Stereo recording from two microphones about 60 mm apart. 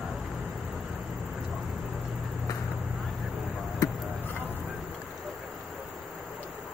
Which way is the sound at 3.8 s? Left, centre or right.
Left.